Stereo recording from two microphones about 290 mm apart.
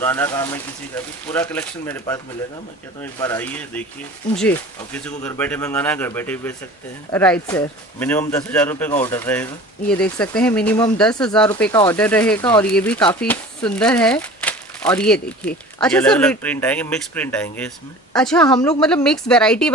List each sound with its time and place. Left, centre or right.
0.0 s speech: centre